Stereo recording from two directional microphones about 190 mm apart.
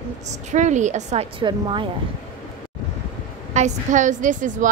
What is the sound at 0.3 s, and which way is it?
Speech, 40° right (ahead or behind).